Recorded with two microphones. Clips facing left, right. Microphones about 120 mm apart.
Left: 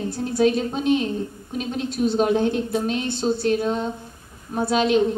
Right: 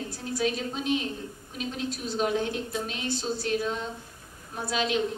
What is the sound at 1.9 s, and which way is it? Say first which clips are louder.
Speech: left 9 dB; 60° left (ahead or behind).